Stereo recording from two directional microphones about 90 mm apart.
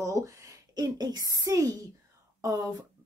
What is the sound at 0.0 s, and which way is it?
A child's voice, 35° right (ahead or behind).